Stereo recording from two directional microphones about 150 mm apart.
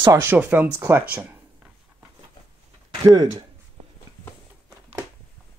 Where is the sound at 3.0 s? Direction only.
25° right (ahead or behind).